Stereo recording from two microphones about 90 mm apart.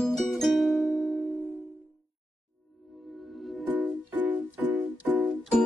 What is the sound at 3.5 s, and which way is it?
Music, centre (ahead or behind).